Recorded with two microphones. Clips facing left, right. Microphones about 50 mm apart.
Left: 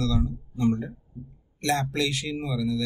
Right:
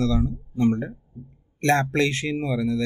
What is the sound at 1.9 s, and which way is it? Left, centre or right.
Speech, right.